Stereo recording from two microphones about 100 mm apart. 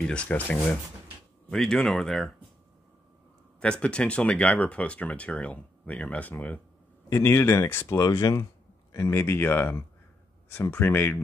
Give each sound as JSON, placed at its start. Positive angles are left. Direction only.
{"t": 0.0, "sound": "speech", "side_deg": 10}
{"t": 3.6, "sound": "speech", "side_deg": 10}
{"t": 7.1, "sound": "speech", "side_deg": 30}